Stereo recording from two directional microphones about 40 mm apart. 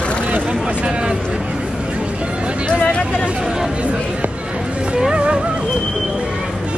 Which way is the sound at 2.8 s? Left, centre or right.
Left.